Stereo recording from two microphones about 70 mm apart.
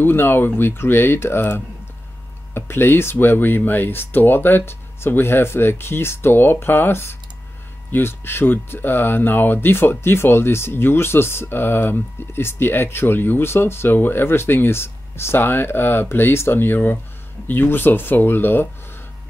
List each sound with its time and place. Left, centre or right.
0.0 s speech: left